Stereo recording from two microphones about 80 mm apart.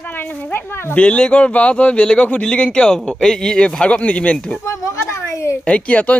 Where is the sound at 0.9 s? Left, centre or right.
Centre.